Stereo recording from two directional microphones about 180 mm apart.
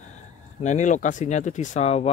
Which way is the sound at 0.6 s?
40° left (ahead or behind).